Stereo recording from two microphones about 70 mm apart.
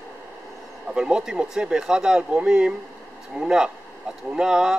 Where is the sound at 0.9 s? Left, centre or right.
Centre.